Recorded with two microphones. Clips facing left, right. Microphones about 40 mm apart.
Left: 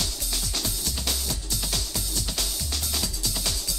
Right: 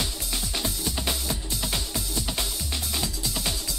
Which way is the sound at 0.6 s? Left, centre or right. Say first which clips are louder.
Right 2 dB; right.